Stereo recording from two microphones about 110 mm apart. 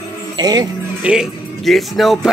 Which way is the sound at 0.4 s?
40° right (ahead or behind).